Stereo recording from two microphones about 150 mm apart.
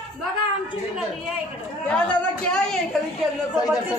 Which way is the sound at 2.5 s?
5° left (ahead or behind).